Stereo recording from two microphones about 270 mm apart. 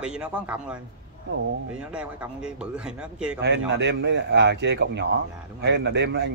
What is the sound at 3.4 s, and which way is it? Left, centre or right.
A man's voice, right.